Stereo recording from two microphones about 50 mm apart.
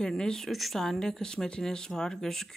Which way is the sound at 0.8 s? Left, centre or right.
Centre.